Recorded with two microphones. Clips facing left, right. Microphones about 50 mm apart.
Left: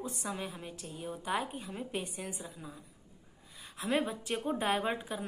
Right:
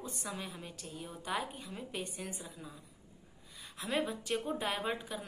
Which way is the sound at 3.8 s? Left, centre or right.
Centre.